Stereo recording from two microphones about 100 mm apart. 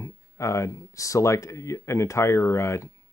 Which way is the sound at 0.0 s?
30° left (ahead or behind).